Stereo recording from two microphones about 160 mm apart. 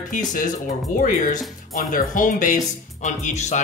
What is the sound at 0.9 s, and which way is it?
Speech, 55° left (ahead or behind).